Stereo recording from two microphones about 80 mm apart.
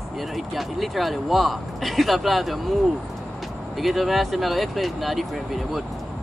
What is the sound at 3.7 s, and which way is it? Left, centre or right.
Speech, centre.